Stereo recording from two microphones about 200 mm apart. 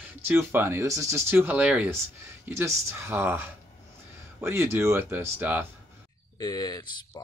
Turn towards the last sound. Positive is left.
turn(degrees=20)  # may be behind; listen again after turning